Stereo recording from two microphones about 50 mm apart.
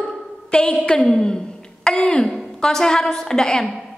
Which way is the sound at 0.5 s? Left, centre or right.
Centre.